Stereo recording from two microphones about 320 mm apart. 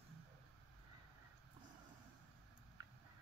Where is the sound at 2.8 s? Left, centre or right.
Centre.